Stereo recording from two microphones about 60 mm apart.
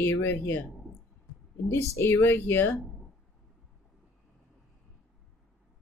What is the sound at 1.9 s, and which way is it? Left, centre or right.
Speech, left.